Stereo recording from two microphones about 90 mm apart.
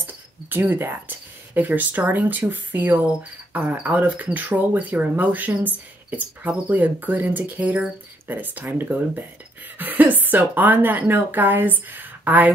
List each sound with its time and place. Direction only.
0.0 s speech: 20° right (ahead or behind)